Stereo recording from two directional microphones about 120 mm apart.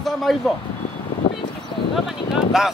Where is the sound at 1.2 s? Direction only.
45° left (ahead or behind).